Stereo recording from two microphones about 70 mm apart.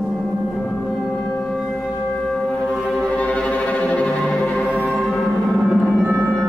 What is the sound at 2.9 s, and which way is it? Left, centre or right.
Music, centre.